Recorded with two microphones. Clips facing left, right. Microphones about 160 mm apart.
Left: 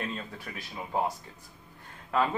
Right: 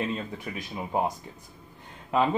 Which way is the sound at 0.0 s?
15° right (ahead or behind).